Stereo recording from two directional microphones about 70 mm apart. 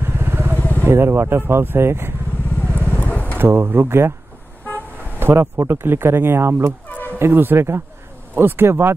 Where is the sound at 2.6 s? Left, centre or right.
Left.